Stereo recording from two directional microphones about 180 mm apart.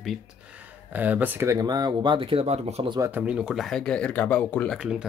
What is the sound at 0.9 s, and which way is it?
Speech, 10° right (ahead or behind).